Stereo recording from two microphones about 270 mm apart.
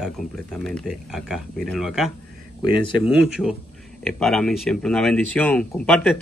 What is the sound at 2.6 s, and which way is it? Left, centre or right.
Speech, centre.